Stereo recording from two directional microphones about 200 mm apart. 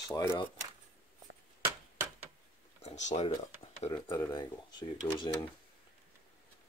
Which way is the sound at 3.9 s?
20° left (ahead or behind).